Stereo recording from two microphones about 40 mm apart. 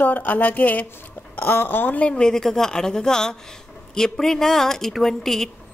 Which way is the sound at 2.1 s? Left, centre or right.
Centre.